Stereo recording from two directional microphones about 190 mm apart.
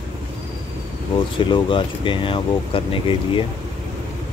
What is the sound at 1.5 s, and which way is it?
Speech, 25° left (ahead or behind).